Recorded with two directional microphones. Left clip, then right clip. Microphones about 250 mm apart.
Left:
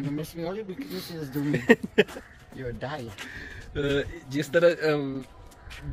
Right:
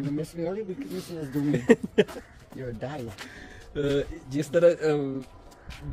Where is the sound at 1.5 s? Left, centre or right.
Centre.